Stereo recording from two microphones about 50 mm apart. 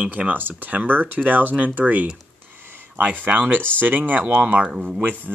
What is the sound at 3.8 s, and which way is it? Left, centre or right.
Speech, right.